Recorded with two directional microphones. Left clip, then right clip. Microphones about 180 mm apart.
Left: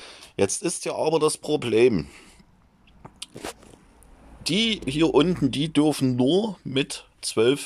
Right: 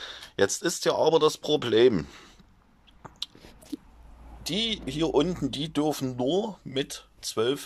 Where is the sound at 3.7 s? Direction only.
60° right (ahead or behind).